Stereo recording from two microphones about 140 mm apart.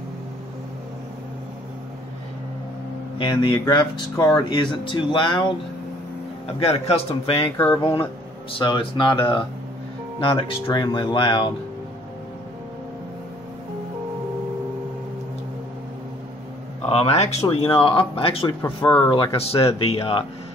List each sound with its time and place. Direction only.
3.2 s speech: 35° left (ahead or behind)
6.4 s speech: 45° left (ahead or behind)
7.5 s speech: 20° left (ahead or behind)
8.5 s speech: 35° left (ahead or behind)
16.9 s speech: 50° left (ahead or behind)
18.6 s speech: 15° left (ahead or behind)
19.0 s speech: 35° left (ahead or behind)